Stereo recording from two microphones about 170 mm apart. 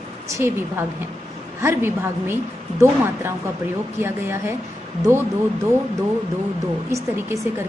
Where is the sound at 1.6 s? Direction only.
15° right (ahead or behind).